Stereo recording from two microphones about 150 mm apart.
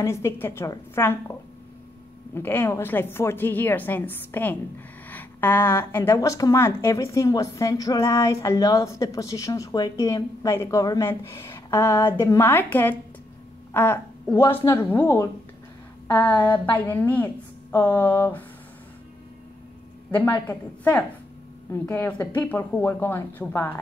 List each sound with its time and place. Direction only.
0.0 s a woman's voice: 20° left (ahead or behind)
2.3 s a woman's voice: 15° left (ahead or behind)
14.3 s a woman's voice: 20° left (ahead or behind)
20.1 s a woman's voice: 10° left (ahead or behind)